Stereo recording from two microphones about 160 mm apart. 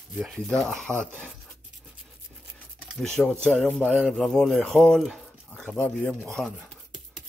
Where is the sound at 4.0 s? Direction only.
Centre (ahead or behind).